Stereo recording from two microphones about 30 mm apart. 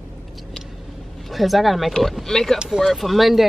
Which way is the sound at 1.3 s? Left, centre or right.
Centre.